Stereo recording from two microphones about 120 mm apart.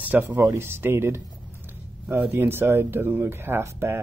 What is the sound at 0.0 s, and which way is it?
Speech, 15° right (ahead or behind).